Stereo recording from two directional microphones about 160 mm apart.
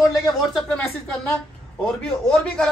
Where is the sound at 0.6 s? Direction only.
10° left (ahead or behind).